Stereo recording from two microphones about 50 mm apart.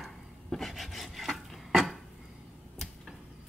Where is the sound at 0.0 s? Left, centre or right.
Centre.